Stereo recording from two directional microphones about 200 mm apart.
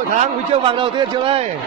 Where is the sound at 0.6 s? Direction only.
25° right (ahead or behind).